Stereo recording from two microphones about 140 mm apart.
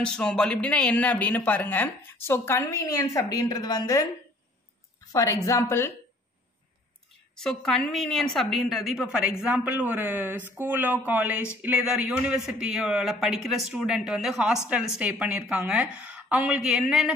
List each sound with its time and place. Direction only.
0.0 s speech: 5° left (ahead or behind); by 4.1 s 25° left (ahead or behind)
5.1 s a woman's voice: 25° left (ahead or behind)
7.3 s a man's voice: 5° left (ahead or behind)